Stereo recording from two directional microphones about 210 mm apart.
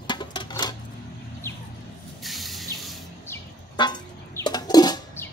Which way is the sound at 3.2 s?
15° left (ahead or behind).